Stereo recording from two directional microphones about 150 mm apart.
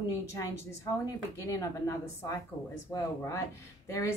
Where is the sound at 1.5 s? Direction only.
20° left (ahead or behind).